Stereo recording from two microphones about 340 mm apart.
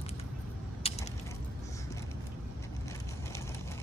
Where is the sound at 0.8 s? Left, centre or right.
Centre.